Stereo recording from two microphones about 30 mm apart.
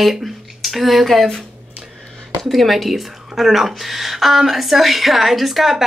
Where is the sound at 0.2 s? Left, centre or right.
Centre.